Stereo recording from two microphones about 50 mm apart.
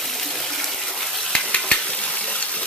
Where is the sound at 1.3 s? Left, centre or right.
Left.